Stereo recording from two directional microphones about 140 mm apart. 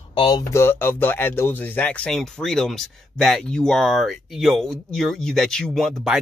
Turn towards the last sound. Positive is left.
turn(degrees=0)  # may be behind; listen again after turning